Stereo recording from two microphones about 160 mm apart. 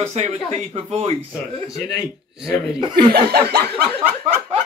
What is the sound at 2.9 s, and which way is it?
Chuckle, 75° right (ahead or behind).